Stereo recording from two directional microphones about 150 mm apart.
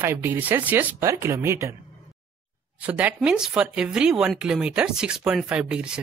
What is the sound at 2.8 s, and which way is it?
A woman's voice, 10° right (ahead or behind).